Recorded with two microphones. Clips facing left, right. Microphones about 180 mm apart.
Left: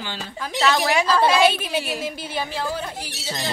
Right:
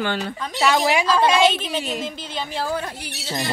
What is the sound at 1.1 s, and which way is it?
A woman's voice, 10° left (ahead or behind).